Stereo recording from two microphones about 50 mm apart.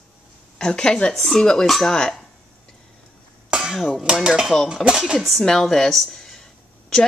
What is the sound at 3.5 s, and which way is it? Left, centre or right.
Dishes, centre.